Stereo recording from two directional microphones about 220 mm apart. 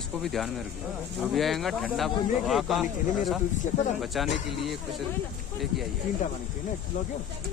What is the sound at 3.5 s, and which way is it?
Speech, 35° left (ahead or behind).